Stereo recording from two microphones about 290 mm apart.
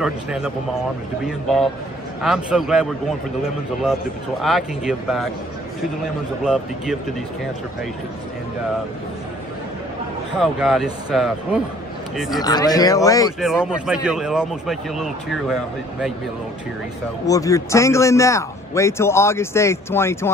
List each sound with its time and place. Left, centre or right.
0.0 s a man's voice: centre
4.4 s a man's voice: centre
6.4 s a man's voice: centre
10.4 s a man's voice: centre
12.4 s a man's voice: centre
13.4 s a man's voice: centre
17.3 s a man's voice: centre